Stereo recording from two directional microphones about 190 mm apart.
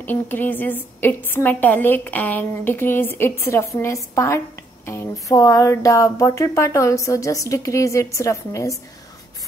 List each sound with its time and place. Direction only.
0.0 s a woman's voice: 10° left (ahead or behind)